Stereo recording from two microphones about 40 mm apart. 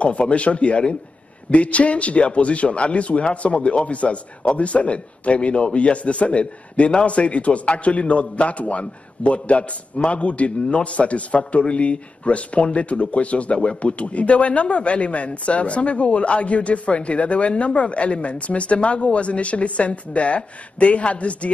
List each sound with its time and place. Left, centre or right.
0.0 s speech: left